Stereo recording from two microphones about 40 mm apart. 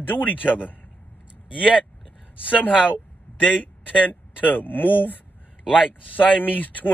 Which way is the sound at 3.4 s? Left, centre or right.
Left.